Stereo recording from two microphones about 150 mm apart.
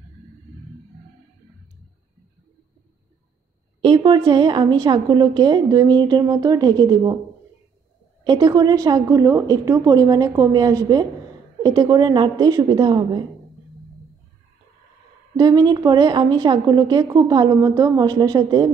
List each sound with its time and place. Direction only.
3.8 s a woman's voice: 30° right (ahead or behind)
8.2 s a woman's voice: 25° right (ahead or behind)
15.3 s a woman's voice: 25° right (ahead or behind)